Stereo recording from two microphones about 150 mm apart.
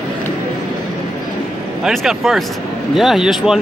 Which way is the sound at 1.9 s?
Centre (ahead or behind).